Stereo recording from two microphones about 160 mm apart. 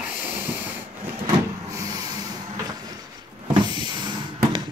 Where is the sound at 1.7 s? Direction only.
25° right (ahead or behind).